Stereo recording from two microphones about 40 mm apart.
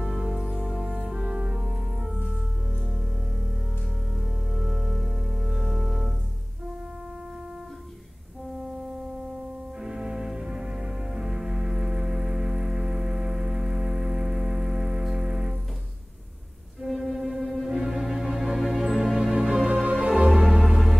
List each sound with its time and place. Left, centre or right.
0.0 s music: centre
1.7 s organ: centre
4.2 s music: centre
9.8 s music: centre
16.8 s music: centre
19.4 s music: centre
20.5 s music: centre